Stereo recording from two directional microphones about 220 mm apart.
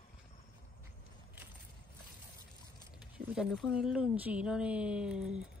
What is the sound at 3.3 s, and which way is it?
Speech, centre (ahead or behind).